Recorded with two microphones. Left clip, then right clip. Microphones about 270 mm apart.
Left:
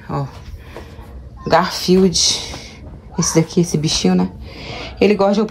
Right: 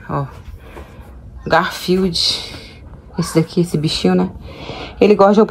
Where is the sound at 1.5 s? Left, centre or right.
Centre.